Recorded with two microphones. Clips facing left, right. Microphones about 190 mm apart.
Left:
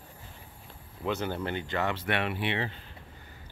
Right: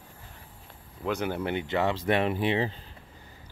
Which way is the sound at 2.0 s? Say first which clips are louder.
Right 5 dB; 35° right (ahead or behind).